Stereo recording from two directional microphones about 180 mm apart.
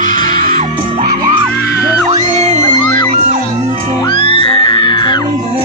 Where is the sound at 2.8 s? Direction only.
20° left (ahead or behind).